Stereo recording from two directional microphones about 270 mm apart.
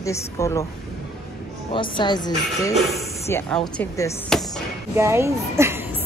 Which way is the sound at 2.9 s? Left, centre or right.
Centre.